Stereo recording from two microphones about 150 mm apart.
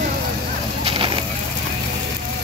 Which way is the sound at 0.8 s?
35° right (ahead or behind).